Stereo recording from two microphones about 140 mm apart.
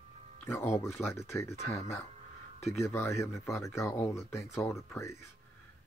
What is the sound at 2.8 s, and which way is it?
Speech, 20° left (ahead or behind).